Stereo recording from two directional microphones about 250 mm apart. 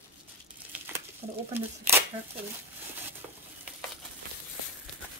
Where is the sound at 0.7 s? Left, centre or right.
Centre.